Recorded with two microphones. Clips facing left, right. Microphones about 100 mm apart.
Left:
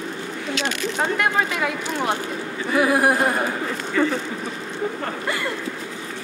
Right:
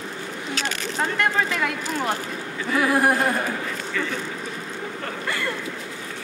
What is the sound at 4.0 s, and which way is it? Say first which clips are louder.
Speech: left 9 dB; 40° left (ahead or behind).